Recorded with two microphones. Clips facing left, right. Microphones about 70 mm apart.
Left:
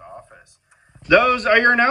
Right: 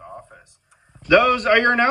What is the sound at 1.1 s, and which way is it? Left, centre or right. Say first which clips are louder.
Speech: even; centre.